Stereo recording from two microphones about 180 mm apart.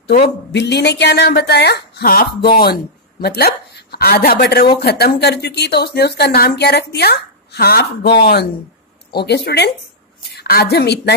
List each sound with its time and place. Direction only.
0.5 s a woman's voice: 70° left (ahead or behind)